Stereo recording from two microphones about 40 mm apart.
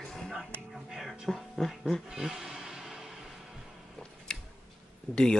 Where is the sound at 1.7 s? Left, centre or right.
Centre.